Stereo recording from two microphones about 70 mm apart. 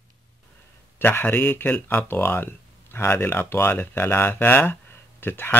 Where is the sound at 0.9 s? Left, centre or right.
Left.